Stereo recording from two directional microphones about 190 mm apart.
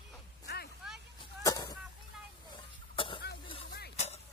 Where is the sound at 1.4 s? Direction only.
20° left (ahead or behind).